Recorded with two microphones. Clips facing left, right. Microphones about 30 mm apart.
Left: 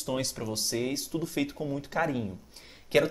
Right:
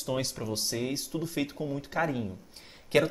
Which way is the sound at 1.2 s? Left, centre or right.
Centre.